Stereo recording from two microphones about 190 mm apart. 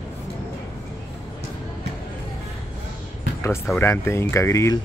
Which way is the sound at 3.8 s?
15° left (ahead or behind).